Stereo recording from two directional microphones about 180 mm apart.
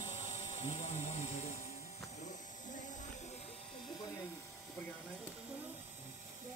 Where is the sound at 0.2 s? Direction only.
35° left (ahead or behind).